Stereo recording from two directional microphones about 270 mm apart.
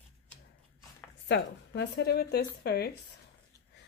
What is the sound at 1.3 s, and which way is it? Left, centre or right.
Speech, left.